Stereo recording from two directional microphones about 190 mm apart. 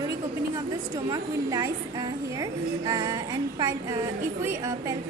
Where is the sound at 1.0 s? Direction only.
20° right (ahead or behind).